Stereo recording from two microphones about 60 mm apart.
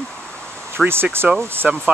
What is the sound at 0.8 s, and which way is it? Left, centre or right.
Speech, centre.